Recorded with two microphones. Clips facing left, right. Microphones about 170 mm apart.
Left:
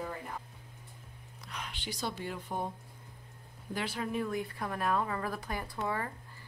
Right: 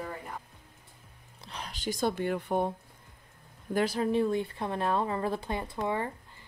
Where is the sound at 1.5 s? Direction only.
35° right (ahead or behind); by 2.7 s 60° right (ahead or behind).